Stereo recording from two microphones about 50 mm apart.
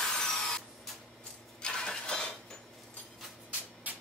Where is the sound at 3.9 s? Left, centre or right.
Right.